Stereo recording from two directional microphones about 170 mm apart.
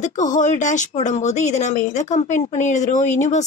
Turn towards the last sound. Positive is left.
turn(degrees=45)  # may be behind; listen again after turning